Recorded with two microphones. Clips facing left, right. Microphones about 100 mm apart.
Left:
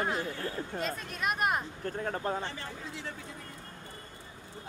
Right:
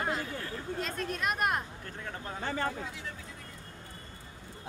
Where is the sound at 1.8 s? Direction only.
40° left (ahead or behind).